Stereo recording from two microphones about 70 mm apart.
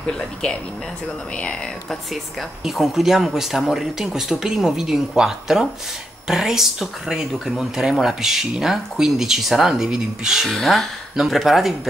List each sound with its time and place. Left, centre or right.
1.3 s speech: centre
2.6 s speech: centre